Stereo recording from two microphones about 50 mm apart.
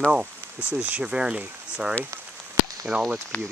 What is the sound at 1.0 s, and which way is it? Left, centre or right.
Speech, centre.